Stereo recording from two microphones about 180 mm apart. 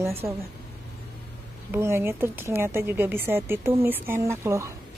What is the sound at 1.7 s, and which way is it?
Speech, 15° right (ahead or behind).